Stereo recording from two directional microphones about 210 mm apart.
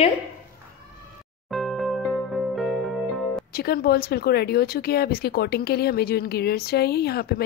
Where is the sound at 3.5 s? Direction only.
50° left (ahead or behind).